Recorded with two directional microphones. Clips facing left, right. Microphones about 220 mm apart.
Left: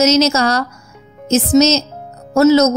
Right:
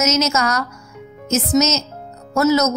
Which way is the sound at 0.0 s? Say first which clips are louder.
Left 6 dB; 30° left (ahead or behind).